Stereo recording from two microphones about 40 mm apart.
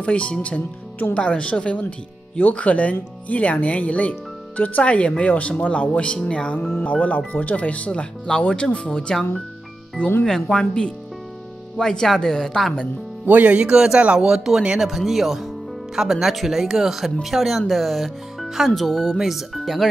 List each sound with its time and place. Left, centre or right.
0.0 s speech: left
4.8 s speech: left
6.8 s speech: left
10.5 s a woman's voice: left; by 12.7 s centre
13.2 s speech: right
13.6 s a woman's voice: right; by 19.1 s centre
19.1 s speech: centre